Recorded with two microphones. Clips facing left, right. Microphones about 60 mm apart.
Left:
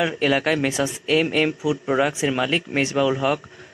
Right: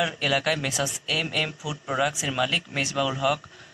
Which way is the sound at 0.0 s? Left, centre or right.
Left.